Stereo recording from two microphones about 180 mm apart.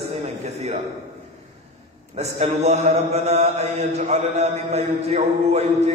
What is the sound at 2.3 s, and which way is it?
Mantra, 40° right (ahead or behind).